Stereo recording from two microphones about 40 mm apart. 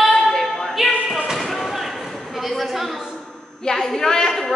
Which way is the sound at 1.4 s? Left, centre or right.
Centre.